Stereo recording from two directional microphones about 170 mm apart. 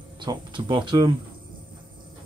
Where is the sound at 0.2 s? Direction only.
25° right (ahead or behind).